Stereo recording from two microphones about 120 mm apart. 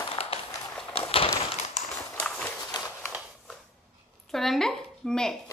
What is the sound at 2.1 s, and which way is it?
Horse, 10° left (ahead or behind).